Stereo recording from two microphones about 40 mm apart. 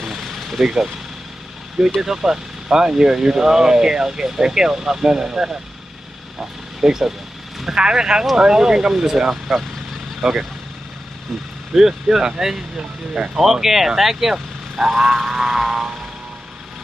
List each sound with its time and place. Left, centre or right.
0.0 s vehicle: centre
2.0 s speech: centre
6.8 s speech: centre
11.7 s speech: centre
13.4 s speech: centre